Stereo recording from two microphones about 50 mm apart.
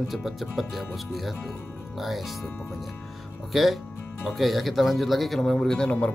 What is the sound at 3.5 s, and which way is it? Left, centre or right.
Speech, centre.